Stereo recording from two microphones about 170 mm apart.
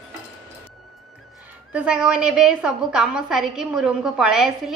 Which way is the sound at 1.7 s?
5° right (ahead or behind).